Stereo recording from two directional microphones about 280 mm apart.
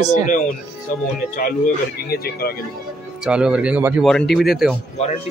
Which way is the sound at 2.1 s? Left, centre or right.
Left.